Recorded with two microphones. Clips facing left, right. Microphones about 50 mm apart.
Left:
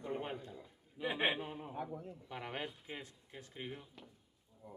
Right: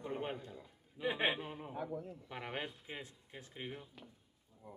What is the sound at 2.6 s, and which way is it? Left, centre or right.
Speech, centre.